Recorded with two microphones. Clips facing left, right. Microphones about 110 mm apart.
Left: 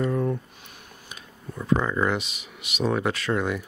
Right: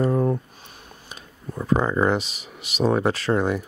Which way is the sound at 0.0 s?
35° right (ahead or behind).